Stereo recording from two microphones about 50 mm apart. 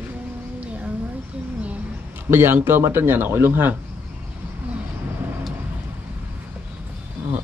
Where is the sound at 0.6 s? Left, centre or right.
Right.